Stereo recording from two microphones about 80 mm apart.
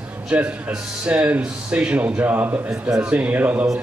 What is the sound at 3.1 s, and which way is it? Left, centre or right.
Speech, centre.